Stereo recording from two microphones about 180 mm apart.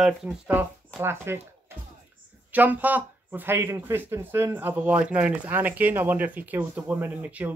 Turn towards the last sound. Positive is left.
turn(degrees=-10)  # may be behind; listen again after turning